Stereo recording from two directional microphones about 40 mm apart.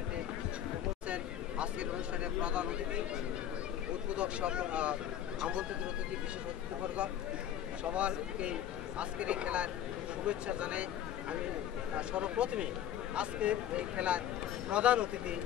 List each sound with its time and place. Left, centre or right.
1.0 s a sound: right
2.4 s speech: right
4.1 s speech: right
7.9 s speech: right